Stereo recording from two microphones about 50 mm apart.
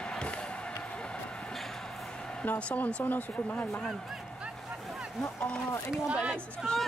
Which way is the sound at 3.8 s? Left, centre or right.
Centre.